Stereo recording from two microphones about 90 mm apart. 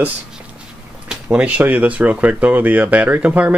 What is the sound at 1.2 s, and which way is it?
Speech, 15° right (ahead or behind).